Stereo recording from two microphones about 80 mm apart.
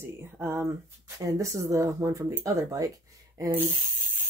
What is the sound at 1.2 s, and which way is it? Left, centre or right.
Speech, right.